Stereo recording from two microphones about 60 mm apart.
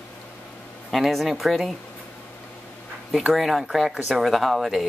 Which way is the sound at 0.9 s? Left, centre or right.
Centre.